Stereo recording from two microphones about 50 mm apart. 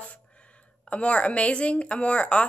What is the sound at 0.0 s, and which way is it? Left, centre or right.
A woman's voice, left.